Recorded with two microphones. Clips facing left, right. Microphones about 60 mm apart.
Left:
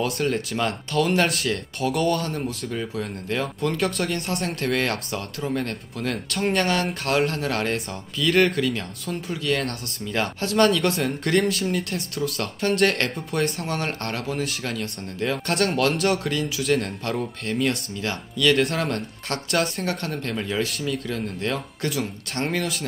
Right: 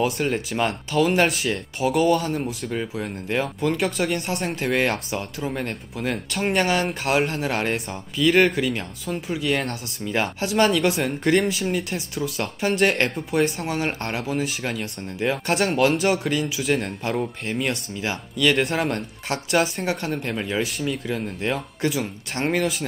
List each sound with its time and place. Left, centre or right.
0.2 s speech: centre